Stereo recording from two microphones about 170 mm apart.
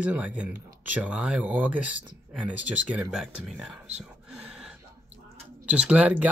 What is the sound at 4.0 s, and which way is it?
Whispering, 5° right (ahead or behind).